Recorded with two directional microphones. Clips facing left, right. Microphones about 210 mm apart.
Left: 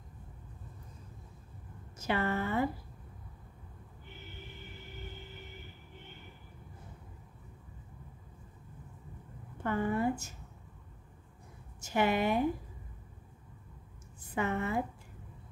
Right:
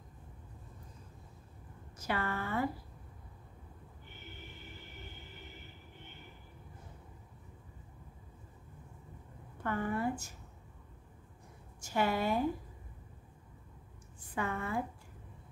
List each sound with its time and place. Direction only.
2.0 s a woman's voice: 25° left (ahead or behind)
9.6 s a woman's voice: 20° left (ahead or behind)
11.8 s a woman's voice: 20° left (ahead or behind)
14.3 s a woman's voice: 20° left (ahead or behind)